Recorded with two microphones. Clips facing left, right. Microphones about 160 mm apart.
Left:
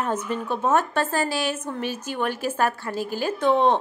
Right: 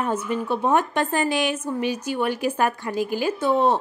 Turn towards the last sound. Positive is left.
turn(degrees=-10)  # may be behind; listen again after turning